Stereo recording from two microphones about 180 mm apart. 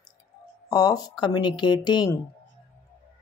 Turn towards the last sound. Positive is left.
turn(degrees=25)  # may be behind; listen again after turning